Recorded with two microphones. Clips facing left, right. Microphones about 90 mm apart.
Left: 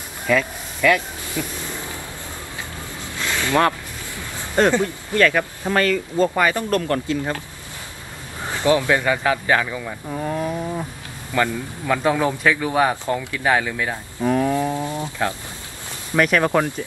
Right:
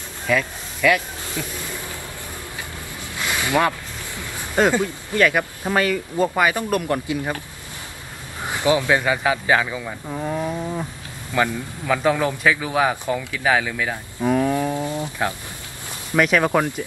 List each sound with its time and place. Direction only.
0.3 s speech: 5° right (ahead or behind)
3.2 s a sound: 15° right (ahead or behind)
4.6 s speech: 10° right (ahead or behind)
8.5 s speech: 15° right (ahead or behind); by 10.9 s centre (ahead or behind)
11.3 s speech: 10° right (ahead or behind)
12.0 s speech: centre (ahead or behind)
14.6 s a sound: 20° left (ahead or behind)
16.2 s speech: 5° right (ahead or behind)